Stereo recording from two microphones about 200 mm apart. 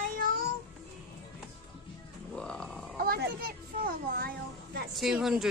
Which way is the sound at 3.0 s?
50° right (ahead or behind).